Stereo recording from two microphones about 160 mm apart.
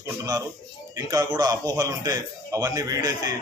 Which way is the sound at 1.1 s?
25° right (ahead or behind).